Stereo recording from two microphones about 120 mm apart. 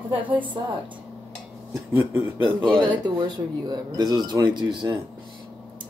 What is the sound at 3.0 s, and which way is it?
Speech, 35° right (ahead or behind).